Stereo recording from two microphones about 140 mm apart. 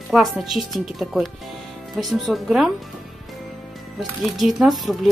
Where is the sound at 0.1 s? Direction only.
Centre (ahead or behind).